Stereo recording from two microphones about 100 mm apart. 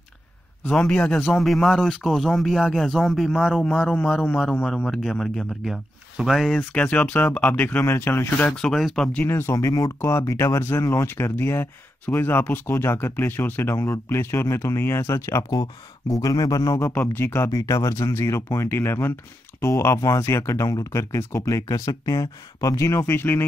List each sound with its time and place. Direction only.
0.7 s speech: 10° left (ahead or behind)
8.5 s speech: 5° left (ahead or behind)
9.2 s speech: 25° left (ahead or behind)
16.9 s speech: 20° left (ahead or behind)
17.5 s speech: 35° left (ahead or behind)